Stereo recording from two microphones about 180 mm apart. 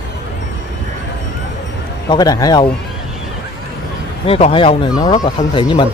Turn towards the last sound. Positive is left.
turn(degrees=25)  # may be behind; listen again after turning